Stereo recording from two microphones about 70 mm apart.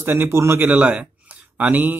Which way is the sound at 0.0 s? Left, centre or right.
Right.